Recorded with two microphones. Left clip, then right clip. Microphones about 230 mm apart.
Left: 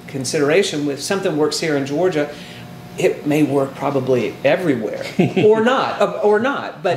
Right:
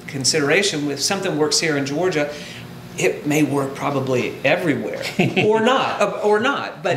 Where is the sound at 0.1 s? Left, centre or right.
Right.